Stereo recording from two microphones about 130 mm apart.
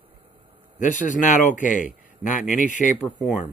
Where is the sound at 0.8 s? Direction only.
80° left.